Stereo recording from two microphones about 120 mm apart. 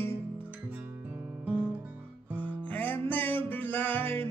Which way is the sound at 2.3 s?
15° left (ahead or behind).